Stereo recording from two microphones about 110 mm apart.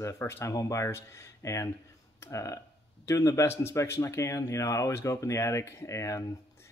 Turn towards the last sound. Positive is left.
turn(degrees=30)  # may be behind; listen again after turning